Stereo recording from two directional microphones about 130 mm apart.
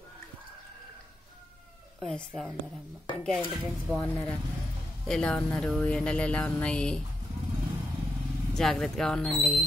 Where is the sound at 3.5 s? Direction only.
Centre (ahead or behind).